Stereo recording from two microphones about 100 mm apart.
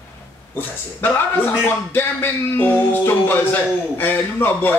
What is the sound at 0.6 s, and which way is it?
Music, 20° left (ahead or behind).